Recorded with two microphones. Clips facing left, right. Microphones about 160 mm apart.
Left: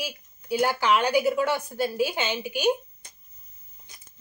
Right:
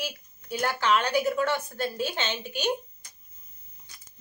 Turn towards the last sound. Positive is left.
turn(degrees=20)  # may be behind; listen again after turning